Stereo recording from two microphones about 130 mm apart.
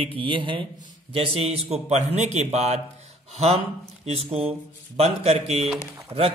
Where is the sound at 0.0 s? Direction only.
40° right (ahead or behind).